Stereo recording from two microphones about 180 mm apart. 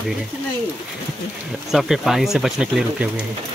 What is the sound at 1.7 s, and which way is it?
Speech, centre (ahead or behind).